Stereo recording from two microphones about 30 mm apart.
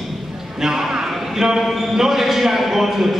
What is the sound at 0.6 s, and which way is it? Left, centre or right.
A man's voice, centre.